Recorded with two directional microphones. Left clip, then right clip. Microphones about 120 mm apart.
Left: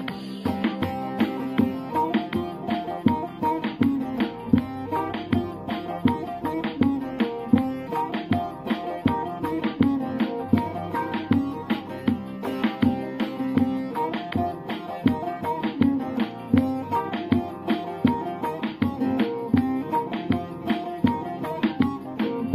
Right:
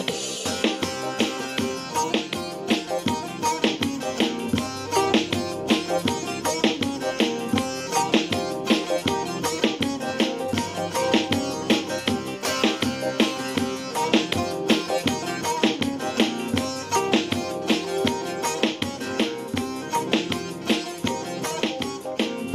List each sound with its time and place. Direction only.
0.6 s music: 25° right (ahead or behind)